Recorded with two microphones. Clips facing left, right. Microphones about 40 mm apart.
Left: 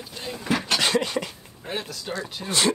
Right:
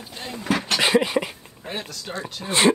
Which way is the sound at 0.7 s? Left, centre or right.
Centre.